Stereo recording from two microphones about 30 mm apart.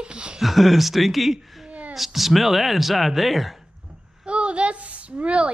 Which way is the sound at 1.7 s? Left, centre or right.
Right.